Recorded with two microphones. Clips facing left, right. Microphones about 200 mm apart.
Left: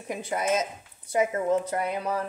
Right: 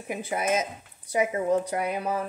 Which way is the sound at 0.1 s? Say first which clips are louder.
Even; 10° right (ahead or behind).